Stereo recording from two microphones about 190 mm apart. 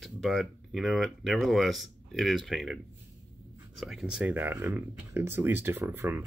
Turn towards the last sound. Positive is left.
turn(degrees=-10)  # may be behind; listen again after turning